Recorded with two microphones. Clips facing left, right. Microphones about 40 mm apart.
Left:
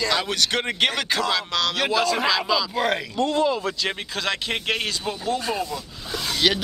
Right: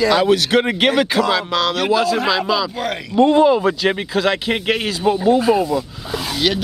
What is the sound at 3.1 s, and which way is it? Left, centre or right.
Speech, right.